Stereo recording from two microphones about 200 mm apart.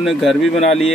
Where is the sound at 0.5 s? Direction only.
30° left (ahead or behind).